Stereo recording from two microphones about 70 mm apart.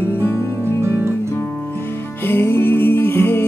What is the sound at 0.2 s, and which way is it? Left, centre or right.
Music, left.